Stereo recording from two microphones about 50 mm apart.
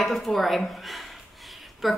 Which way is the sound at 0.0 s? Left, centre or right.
Centre.